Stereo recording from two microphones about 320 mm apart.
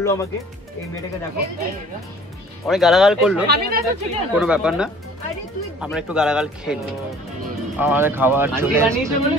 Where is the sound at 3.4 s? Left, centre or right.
Right.